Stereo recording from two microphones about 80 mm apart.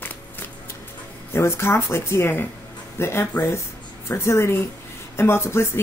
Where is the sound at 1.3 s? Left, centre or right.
Left.